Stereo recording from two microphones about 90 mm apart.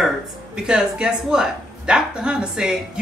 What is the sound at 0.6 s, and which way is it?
A woman's voice, 10° right (ahead or behind).